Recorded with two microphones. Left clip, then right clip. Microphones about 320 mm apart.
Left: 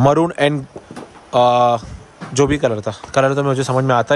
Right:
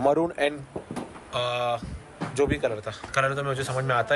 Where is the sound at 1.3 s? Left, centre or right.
Centre.